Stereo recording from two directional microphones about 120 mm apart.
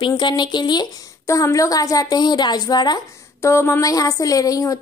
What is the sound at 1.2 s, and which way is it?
A woman's voice, 25° left (ahead or behind).